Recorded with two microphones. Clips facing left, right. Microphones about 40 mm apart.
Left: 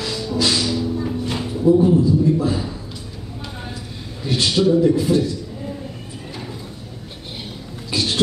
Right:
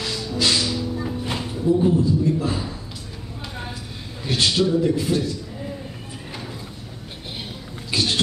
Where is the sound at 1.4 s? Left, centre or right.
Centre.